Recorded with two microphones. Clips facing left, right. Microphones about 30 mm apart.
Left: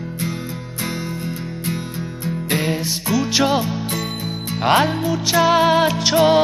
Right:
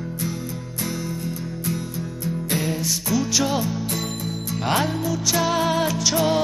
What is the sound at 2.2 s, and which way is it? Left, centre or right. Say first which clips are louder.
Music: left 4 dB; left.